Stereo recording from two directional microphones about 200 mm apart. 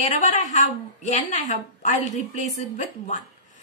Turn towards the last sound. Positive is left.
turn(degrees=40)  # may be behind; listen again after turning